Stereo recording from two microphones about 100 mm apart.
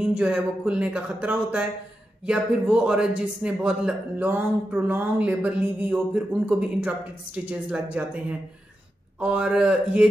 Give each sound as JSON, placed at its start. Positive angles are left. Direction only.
{"t": 0.0, "sound": "speech", "side_deg": -10}